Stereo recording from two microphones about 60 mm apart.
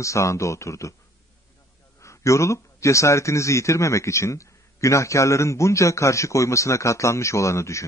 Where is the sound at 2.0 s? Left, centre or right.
Left.